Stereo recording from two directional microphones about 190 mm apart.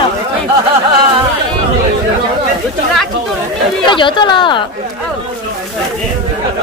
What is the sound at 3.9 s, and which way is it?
Speech, 25° left (ahead or behind).